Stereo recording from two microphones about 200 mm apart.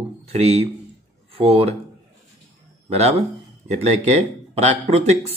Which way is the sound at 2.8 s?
35° right (ahead or behind).